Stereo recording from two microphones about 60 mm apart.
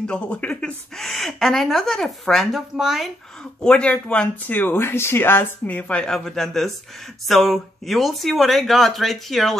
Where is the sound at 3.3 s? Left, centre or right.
Centre.